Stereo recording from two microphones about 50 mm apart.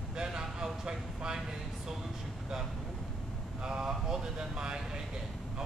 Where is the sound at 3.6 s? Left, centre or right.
Centre.